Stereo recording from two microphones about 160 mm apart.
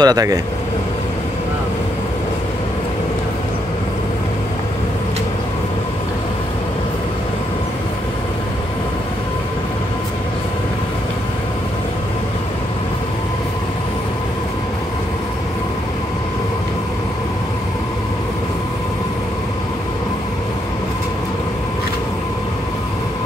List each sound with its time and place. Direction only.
0.0 s speech: 25° right (ahead or behind)